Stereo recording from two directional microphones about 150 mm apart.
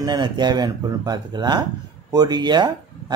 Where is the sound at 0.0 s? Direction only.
30° right (ahead or behind).